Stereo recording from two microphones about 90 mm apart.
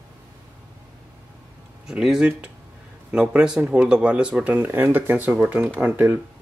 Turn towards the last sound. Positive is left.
turn(degrees=-20)  # may be behind; listen again after turning